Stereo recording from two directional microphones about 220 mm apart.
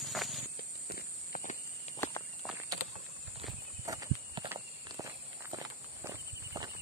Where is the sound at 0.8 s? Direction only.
40° left (ahead or behind).